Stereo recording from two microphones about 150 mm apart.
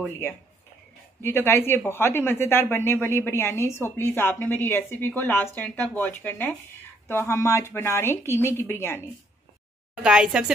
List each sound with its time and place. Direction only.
1.2 s a woman's voice: 15° left (ahead or behind)
10.0 s a woman's voice: 5° right (ahead or behind)